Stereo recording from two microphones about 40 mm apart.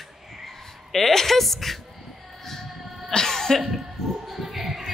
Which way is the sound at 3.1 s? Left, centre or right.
Centre.